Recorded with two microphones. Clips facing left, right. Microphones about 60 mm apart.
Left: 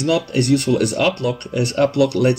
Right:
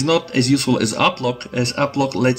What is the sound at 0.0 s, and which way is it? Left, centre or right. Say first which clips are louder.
Speech: right 1 dB; right.